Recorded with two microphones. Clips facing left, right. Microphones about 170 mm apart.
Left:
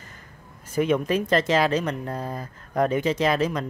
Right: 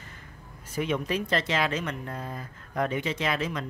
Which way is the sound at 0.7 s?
45° left (ahead or behind).